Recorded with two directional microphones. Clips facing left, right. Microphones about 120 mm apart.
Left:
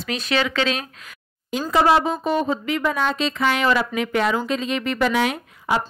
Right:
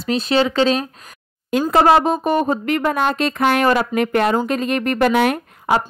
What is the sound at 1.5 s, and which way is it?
Speech, 55° right (ahead or behind).